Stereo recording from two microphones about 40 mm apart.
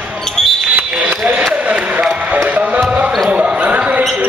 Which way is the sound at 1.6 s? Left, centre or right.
Right.